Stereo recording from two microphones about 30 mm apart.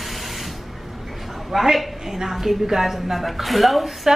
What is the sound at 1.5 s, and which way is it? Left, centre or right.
A woman's voice, centre.